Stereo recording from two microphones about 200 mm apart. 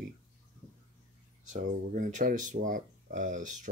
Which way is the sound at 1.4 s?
40° right (ahead or behind).